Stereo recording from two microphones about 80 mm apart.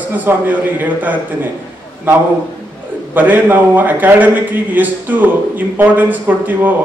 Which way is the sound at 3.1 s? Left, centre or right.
Right.